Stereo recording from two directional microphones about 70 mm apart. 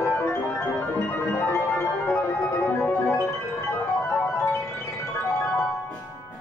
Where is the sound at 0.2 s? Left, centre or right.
Left.